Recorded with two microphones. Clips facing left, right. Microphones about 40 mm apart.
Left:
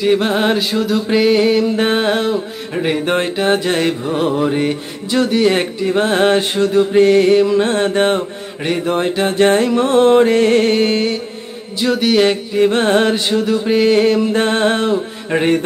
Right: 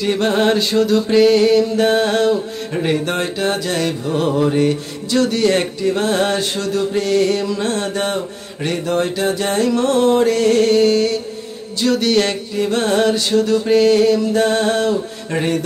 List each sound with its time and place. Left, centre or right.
0.0 s music: centre; by 9.7 s left
9.7 s music: left
11.8 s a sound: centre
12.5 s music: left